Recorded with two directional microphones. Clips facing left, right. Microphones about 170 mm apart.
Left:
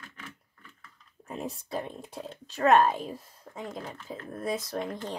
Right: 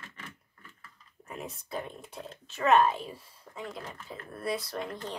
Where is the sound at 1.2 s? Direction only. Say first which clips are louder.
Left 5 dB; 35° left (ahead or behind).